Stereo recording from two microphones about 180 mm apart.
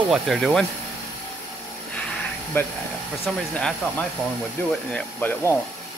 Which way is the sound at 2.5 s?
10° left (ahead or behind).